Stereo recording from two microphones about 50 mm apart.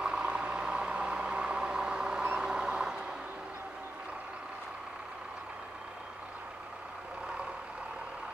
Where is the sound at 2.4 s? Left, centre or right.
Centre.